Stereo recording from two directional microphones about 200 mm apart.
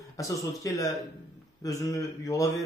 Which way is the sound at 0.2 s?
15° left (ahead or behind).